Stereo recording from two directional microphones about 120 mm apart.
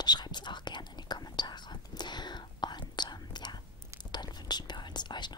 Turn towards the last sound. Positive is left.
turn(degrees=40)  # may be behind; listen again after turning